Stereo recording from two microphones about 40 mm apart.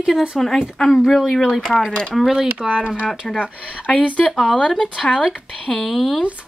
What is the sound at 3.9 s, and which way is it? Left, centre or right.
Speech, left.